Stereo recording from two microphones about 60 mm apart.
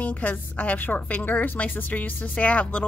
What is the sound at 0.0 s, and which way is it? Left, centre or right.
A woman's voice, left.